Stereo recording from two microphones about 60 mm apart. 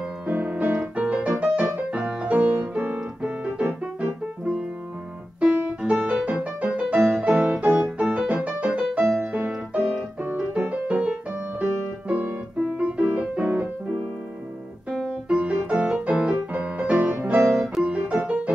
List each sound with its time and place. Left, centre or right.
0.3 s music: right
10.4 s music: right
12.1 s piano: right
15.0 s music: centre